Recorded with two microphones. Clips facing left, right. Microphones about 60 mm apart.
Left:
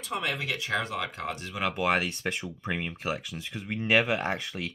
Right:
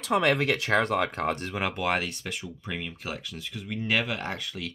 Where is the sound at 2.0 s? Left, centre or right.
Left.